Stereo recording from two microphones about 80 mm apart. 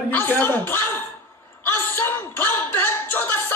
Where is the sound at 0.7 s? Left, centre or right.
Left.